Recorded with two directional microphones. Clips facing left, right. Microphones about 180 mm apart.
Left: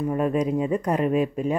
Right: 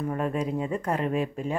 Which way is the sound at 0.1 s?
15° left (ahead or behind).